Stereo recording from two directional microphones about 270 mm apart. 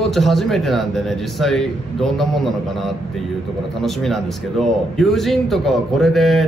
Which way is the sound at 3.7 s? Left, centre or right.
Centre.